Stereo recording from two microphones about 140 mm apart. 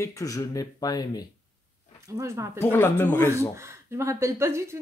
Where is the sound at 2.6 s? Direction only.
15° left (ahead or behind).